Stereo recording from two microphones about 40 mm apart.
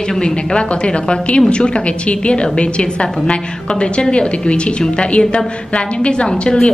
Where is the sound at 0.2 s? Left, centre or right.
Left.